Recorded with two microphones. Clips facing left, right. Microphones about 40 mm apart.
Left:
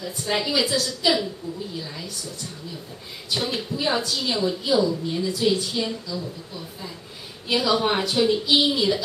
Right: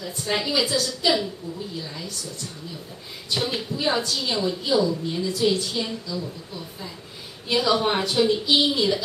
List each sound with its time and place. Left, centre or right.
0.0 s a woman's voice: centre
3.3 s a woman's voice: centre